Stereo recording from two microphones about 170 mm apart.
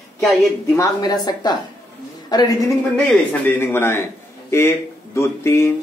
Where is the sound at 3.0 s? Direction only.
10° left (ahead or behind).